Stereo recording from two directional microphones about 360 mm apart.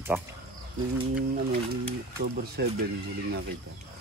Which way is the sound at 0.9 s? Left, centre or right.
Right.